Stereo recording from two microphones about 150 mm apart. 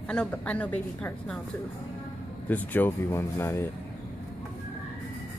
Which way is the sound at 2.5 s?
10° left (ahead or behind).